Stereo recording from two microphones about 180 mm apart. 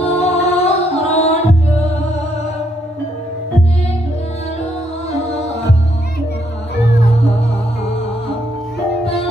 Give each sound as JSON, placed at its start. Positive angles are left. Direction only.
{"t": 0.0, "sound": "music", "side_deg": 35}